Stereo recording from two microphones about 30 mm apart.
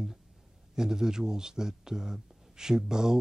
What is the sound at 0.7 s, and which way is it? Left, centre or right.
Speech, centre.